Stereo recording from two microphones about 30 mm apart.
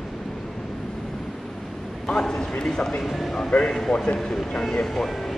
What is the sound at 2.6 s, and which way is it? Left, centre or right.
Speech, left.